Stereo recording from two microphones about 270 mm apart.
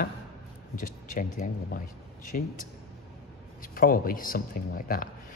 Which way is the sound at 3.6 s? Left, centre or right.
Left.